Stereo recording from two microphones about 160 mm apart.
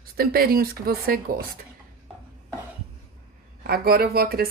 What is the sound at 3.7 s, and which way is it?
Speech, 70° right (ahead or behind).